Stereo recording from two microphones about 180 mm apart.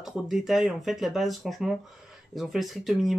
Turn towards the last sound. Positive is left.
turn(degrees=0)  # may be behind; listen again after turning